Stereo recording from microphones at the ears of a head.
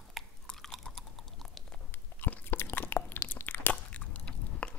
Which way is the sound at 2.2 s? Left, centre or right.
Left.